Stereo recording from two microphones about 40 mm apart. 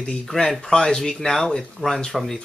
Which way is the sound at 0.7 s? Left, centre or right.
Centre.